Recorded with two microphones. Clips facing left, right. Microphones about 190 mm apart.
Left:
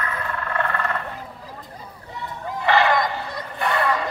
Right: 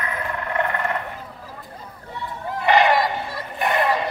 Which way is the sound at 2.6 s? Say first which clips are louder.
Right 2 dB; 20° right (ahead or behind).